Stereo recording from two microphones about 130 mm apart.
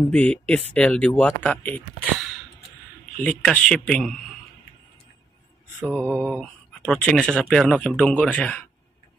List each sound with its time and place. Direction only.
0.1 s speech: 10° left (ahead or behind)
3.2 s speech: 10° left (ahead or behind)
5.8 s mantra: 15° right (ahead or behind)
6.2 s speech: 5° left (ahead or behind)